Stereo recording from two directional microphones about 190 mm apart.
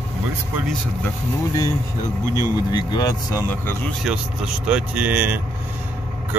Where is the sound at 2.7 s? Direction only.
20° left (ahead or behind).